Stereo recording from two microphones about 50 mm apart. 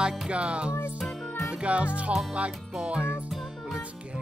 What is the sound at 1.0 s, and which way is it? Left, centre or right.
Music, centre.